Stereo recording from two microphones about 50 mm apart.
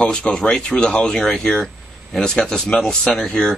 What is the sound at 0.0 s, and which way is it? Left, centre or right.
Speech, centre.